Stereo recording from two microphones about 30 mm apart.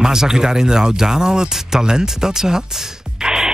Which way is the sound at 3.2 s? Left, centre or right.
Right.